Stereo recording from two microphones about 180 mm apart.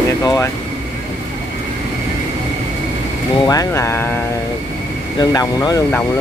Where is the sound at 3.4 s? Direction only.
20° left (ahead or behind).